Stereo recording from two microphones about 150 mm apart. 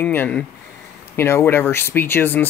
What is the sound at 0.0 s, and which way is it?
Speech, 10° left (ahead or behind).